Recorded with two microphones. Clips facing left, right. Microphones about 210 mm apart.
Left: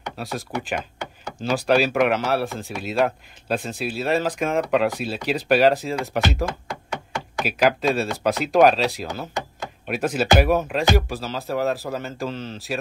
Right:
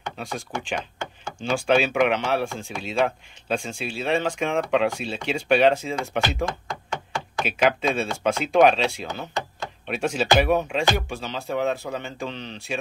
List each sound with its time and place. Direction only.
0.2 s speech: 5° left (ahead or behind)